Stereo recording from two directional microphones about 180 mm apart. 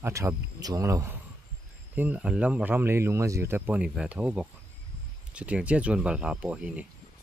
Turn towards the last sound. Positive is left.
turn(degrees=-5)  # may be behind; listen again after turning